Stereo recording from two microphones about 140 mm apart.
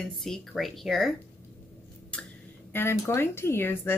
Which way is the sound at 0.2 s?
Centre (ahead or behind).